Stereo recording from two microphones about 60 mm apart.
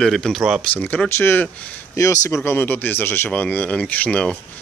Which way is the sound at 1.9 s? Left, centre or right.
Left.